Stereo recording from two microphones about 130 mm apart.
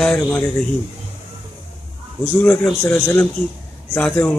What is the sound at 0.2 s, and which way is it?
Speech, 15° left (ahead or behind).